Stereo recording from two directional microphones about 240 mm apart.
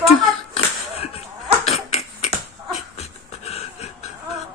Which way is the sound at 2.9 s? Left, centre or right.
Left.